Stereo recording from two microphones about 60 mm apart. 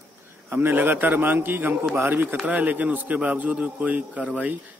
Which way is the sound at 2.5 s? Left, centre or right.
Right.